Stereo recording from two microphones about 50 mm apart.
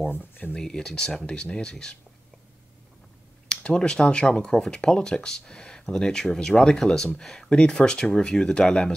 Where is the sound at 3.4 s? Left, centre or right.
Centre.